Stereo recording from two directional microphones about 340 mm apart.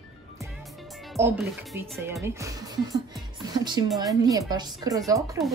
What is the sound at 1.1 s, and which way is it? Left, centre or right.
Speech, centre.